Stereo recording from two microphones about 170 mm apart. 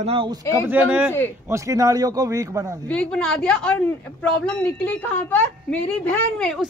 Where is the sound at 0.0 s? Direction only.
30° right (ahead or behind).